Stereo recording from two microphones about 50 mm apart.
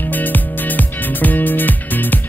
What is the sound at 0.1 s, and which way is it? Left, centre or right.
Music, left.